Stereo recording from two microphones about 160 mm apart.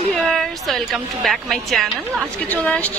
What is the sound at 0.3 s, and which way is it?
A woman's voice, centre (ahead or behind).